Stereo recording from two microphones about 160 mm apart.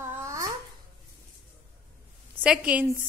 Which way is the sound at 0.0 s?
15° right (ahead or behind).